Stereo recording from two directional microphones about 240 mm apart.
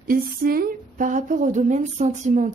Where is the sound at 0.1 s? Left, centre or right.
Right.